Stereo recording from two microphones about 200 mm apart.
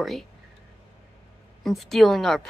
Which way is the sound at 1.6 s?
Centre (ahead or behind).